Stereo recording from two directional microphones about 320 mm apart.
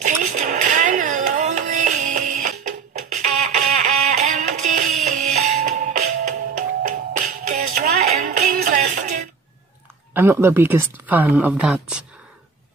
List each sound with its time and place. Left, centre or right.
0.0 s music: right
10.1 s speech: centre